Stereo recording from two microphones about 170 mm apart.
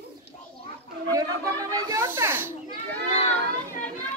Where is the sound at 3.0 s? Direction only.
90° right.